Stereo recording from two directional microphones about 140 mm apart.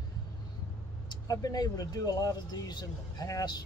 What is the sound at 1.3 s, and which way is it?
Speech, 25° left (ahead or behind).